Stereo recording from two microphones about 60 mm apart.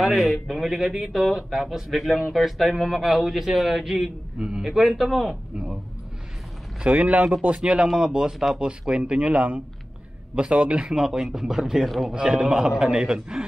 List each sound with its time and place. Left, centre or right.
0.0 s speech: centre
6.8 s speech: centre
12.1 s speech: centre